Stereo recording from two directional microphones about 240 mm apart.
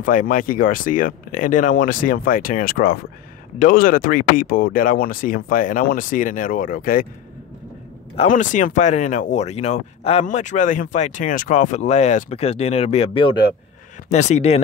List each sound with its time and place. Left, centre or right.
0.0 s speech: left
8.2 s speech: left